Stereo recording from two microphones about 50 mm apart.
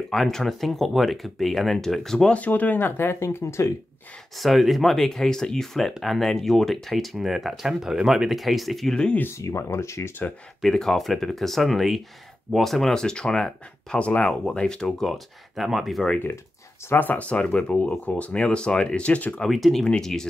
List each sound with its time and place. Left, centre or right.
0.1 s speech: centre
2.3 s speech: left
4.4 s speech: centre
9.3 s speech: left
10.7 s speech: centre
12.9 s speech: centre
16.9 s speech: left
17.3 s speech: left
19.5 s speech: centre